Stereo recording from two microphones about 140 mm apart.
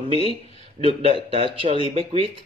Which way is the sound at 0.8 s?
40° right (ahead or behind).